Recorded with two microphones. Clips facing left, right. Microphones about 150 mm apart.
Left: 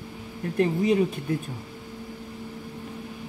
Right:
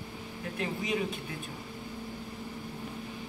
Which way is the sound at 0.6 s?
40° left (ahead or behind).